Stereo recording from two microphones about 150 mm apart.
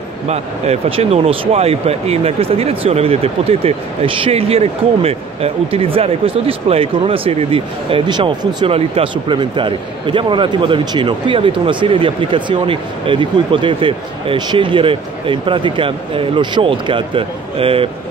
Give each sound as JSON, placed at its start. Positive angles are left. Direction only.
{"t": 0.3, "sound": "speech", "side_deg": -40}